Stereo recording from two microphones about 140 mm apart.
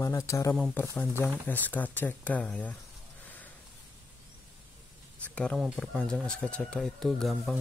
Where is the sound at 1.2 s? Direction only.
15° left (ahead or behind).